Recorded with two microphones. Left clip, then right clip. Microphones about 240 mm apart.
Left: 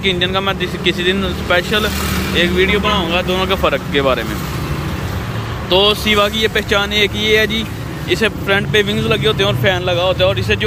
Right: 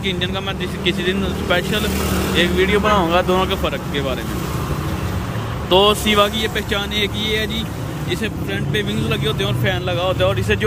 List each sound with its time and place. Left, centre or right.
0.0 s speech: centre
3.4 s speech: centre
5.7 s speech: centre